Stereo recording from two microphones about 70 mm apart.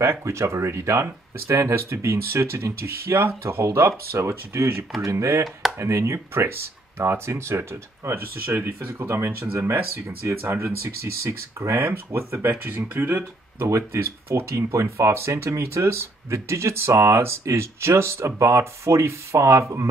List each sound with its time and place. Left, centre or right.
0.0 s speech: right
13.7 s speech: right